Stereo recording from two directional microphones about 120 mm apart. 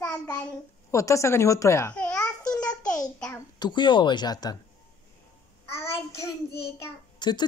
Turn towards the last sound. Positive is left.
turn(degrees=40)  # may be behind; listen again after turning